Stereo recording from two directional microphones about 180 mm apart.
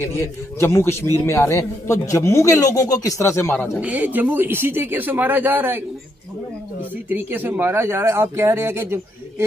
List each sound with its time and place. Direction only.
0.0 s a man's voice: 15° left (ahead or behind)
3.8 s speech: 10° right (ahead or behind)
7.1 s speech: 10° right (ahead or behind)